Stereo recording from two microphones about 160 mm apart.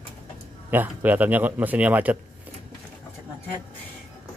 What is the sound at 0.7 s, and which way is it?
A man's voice, 10° right (ahead or behind).